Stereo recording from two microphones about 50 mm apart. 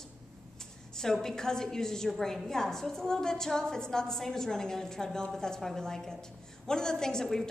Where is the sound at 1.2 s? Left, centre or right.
Centre.